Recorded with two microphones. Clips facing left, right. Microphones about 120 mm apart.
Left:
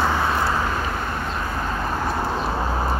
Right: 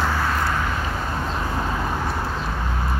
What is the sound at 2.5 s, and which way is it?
Bird, 40° left (ahead or behind).